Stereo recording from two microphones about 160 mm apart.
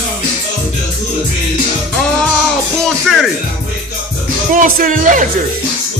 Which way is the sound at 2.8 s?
Centre (ahead or behind).